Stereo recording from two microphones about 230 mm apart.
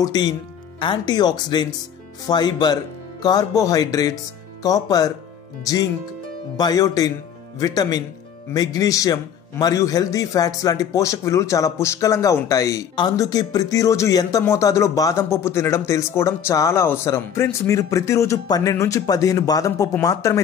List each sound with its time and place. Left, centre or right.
0.0 s a man's voice: centre
6.5 s a man's voice: centre